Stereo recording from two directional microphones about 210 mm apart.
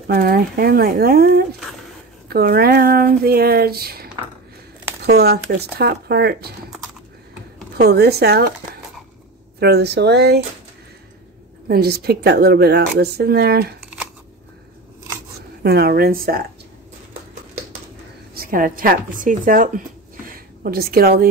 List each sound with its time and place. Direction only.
0.0 s speech: 45° right (ahead or behind)
7.7 s speech: 50° right (ahead or behind)
9.6 s speech: 50° right (ahead or behind)
11.6 s speech: 50° right (ahead or behind)
15.6 s speech: 50° right (ahead or behind)
18.3 s a woman's voice: 45° right (ahead or behind)